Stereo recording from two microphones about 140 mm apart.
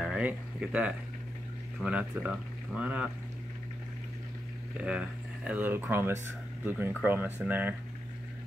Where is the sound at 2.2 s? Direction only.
10° right (ahead or behind).